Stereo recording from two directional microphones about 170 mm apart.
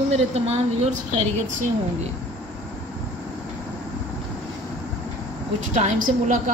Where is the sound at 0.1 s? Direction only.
40° right (ahead or behind).